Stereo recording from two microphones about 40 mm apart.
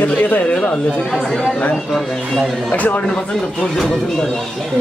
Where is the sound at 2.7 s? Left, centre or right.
Left.